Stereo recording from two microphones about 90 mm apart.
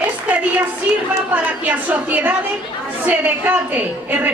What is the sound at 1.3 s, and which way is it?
A woman's voice, 20° right (ahead or behind).